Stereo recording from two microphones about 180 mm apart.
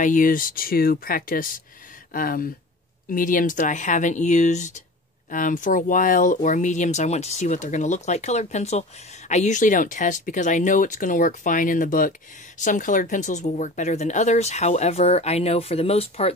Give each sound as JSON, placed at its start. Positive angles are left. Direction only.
{"t": 0.0, "sound": "speech", "side_deg": 50}